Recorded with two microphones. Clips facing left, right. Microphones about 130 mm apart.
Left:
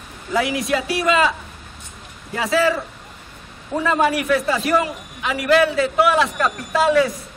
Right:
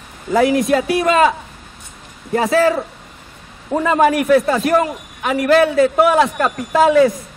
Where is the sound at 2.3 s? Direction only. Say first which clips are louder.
Right 4 dB; 45° right (ahead or behind).